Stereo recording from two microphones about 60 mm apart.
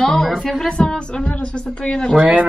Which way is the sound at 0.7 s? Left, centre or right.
Centre.